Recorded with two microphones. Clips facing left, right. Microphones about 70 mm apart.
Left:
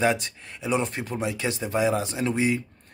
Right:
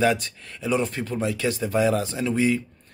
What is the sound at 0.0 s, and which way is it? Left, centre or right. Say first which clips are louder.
Speech: right 2 dB; left.